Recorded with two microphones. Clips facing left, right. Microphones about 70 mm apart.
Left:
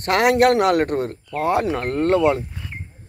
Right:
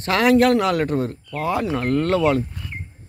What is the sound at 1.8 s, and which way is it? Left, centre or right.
Speech, left.